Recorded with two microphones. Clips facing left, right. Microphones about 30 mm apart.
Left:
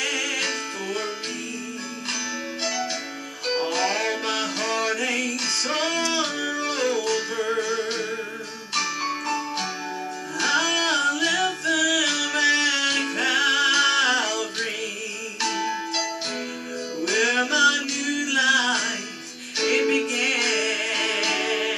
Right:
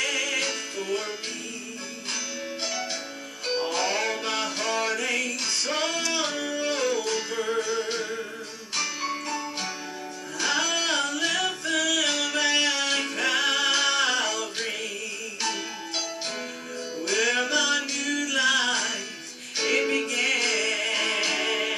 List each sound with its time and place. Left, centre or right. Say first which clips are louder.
0.0 s music: left 1 dB; left
2.6 s music: left 5 dB; left
3.4 s music: left 3 dB; left
7.3 s music: left 2 dB; centre
8.7 s music: left 3 dB; left
15.5 s music: left 6 dB; left
17.0 s music: left 3 dB; left